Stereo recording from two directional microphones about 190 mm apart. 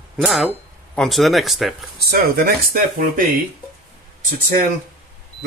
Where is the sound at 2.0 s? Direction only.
55° right (ahead or behind).